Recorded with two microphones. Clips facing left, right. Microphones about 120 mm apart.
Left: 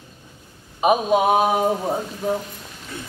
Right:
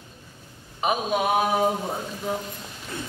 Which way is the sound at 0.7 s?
20° left (ahead or behind).